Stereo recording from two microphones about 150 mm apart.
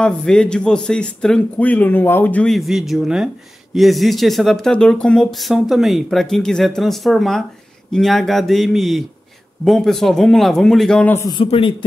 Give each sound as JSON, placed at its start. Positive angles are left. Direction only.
{"t": 0.0, "sound": "speech", "side_deg": 5}
{"t": 11.2, "sound": "speech", "side_deg": 35}